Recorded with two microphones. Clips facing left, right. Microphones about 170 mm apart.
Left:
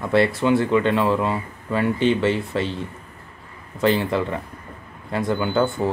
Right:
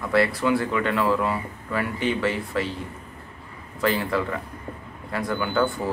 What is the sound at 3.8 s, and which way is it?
Speech, 25° left (ahead or behind).